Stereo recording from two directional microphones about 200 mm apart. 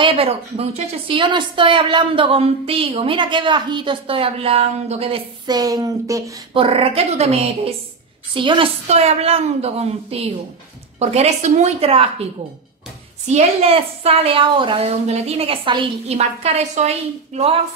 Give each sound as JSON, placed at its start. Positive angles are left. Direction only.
{"t": 0.0, "sound": "a woman's voice", "side_deg": -25}
{"t": 13.3, "sound": "a woman's voice", "side_deg": -30}